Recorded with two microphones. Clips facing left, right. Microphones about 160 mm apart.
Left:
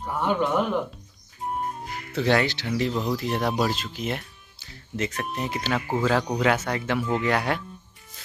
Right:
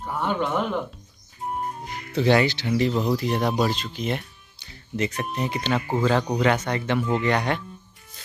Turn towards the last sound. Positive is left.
turn(degrees=5)  # may be behind; listen again after turning